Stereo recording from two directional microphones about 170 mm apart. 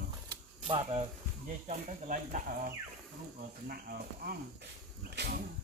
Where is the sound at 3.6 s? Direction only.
60° right (ahead or behind).